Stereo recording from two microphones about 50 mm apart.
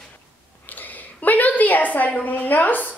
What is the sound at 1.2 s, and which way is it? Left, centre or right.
A woman's voice, left.